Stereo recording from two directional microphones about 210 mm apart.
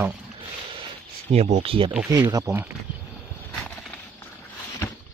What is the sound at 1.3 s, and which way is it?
Speech, 35° right (ahead or behind).